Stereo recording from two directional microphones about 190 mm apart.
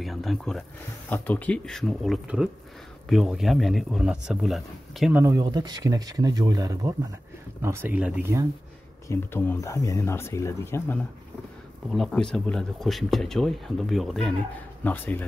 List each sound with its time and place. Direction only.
0.0 s speech: centre (ahead or behind)
5.2 s speech: 20° right (ahead or behind)
9.1 s speech: 10° left (ahead or behind)
11.9 s speech: centre (ahead or behind)